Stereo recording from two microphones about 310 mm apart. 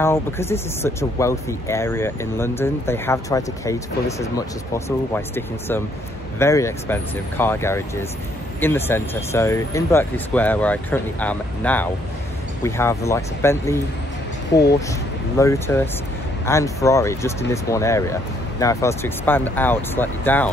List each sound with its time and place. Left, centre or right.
0.0 s speech: centre
4.7 s speech: centre
14.5 s speech: left
15.3 s speech: centre